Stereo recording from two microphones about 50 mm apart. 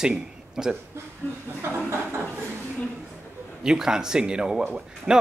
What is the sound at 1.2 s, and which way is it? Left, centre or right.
Speech, left.